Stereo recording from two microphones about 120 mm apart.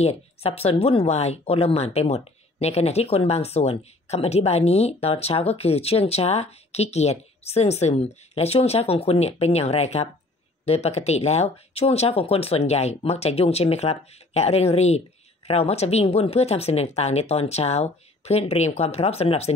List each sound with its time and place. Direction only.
0.0 s speech: 60° left (ahead or behind)